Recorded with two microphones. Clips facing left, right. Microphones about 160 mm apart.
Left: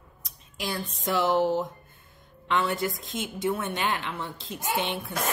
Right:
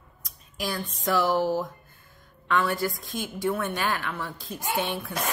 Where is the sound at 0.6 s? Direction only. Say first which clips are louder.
Right 1 dB; 25° left (ahead or behind).